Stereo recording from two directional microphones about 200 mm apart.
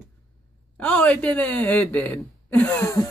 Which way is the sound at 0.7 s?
5° left (ahead or behind).